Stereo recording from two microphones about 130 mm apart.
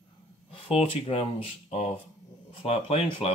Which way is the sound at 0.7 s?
50° left (ahead or behind).